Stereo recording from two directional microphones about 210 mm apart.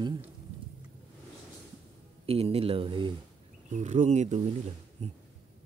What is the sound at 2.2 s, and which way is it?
Speech, 30° right (ahead or behind).